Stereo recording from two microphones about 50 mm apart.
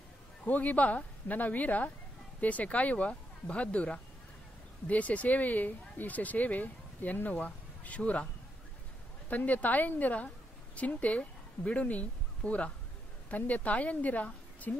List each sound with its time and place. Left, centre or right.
0.5 s speech: left
9.3 s speech: left